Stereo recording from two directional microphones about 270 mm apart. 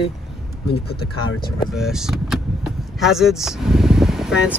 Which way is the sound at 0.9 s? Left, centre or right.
Left.